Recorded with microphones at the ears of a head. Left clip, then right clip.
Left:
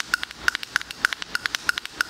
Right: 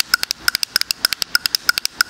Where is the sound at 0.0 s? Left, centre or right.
Right.